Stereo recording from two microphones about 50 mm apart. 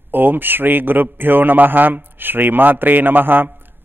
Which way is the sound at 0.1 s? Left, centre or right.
Right.